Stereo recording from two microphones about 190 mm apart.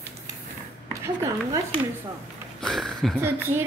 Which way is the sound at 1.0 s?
15° right (ahead or behind).